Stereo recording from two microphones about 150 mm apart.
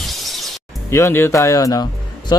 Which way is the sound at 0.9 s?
15° left (ahead or behind).